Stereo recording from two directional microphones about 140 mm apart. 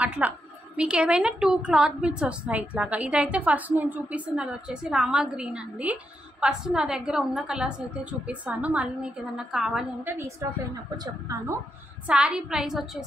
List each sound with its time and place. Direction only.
0.0 s a woman's voice: 10° right (ahead or behind)
10.1 s speech: 20° right (ahead or behind)
12.1 s a woman's voice: 5° right (ahead or behind)